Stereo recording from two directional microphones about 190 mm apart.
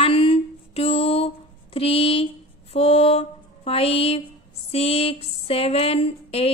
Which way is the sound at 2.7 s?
30° left (ahead or behind).